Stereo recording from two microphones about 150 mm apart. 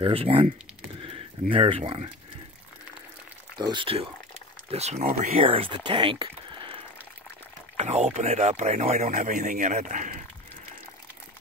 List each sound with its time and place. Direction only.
0.0 s speech: 35° right (ahead or behind)
1.5 s speech: 40° right (ahead or behind)
3.5 s speech: 30° right (ahead or behind)
7.7 s speech: 45° right (ahead or behind)